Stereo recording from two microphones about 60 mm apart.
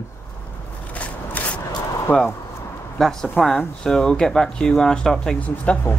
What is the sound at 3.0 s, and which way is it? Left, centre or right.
Speech, centre.